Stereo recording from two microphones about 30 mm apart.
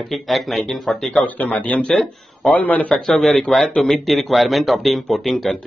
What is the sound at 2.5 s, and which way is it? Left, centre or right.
Speech, left.